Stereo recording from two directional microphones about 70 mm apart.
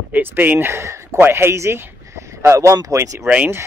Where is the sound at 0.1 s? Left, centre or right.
Right.